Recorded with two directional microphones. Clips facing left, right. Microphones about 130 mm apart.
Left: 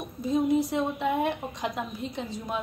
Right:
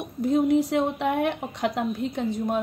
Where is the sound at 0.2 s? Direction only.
70° right (ahead or behind).